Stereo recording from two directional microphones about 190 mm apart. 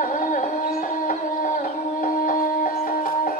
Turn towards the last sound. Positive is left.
turn(degrees=45)  # may be behind; listen again after turning